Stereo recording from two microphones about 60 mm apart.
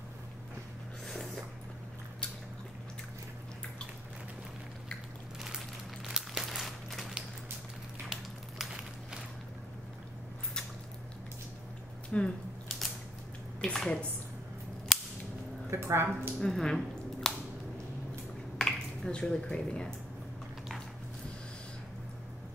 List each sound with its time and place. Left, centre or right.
1.0 s a sound: centre
6.0 s crumpling: centre
8.1 s a sound: centre
12.1 s speech: centre
12.6 s typewriter: centre
13.6 s a woman's voice: centre
14.9 s cap gun: centre
15.7 s speech: right
16.3 s speech: centre
18.6 s a sound: centre